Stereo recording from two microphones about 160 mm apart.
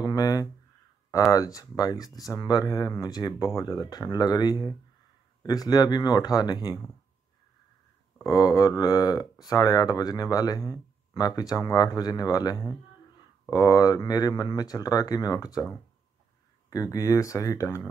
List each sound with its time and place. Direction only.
0.0 s a sound: 25° left (ahead or behind)
1.3 s speech: 20° left (ahead or behind)
8.3 s speech: 25° left (ahead or behind)
16.7 s speech: 20° left (ahead or behind)